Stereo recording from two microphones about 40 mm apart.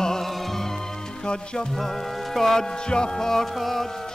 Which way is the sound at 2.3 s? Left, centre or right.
Centre.